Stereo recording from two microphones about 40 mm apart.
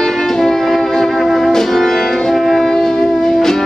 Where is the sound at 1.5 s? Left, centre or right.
Centre.